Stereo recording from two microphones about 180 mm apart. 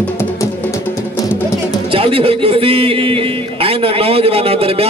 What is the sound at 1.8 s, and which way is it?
Speech, 30° right (ahead or behind).